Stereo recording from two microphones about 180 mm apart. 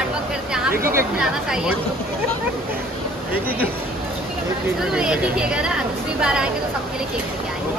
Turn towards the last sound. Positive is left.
turn(degrees=-5)  # may be behind; listen again after turning